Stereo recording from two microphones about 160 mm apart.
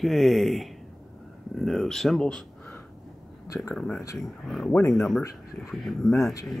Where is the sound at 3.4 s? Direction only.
20° left (ahead or behind).